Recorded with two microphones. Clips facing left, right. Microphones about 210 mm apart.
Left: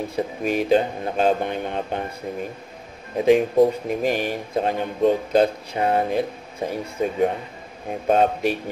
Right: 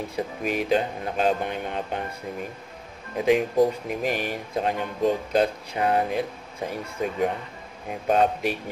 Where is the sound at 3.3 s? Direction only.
30° left (ahead or behind).